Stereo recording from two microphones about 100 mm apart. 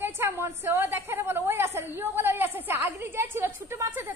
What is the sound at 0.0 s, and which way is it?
A woman's voice, 25° right (ahead or behind).